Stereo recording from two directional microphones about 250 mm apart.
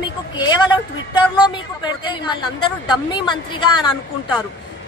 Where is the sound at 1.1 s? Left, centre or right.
Centre.